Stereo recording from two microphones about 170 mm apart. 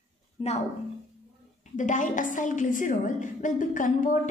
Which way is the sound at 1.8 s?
45° left (ahead or behind).